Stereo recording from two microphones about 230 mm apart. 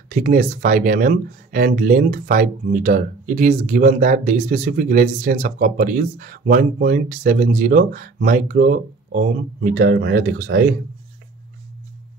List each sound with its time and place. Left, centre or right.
0.1 s speech: right